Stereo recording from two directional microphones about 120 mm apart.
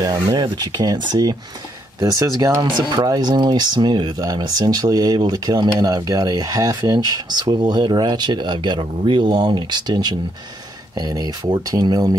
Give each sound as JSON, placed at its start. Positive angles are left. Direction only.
{"t": 0.0, "sound": "speech", "side_deg": -35}
{"t": 3.1, "sound": "speech", "side_deg": -35}